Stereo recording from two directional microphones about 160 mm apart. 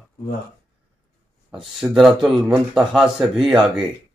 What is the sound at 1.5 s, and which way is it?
Speech, centre (ahead or behind).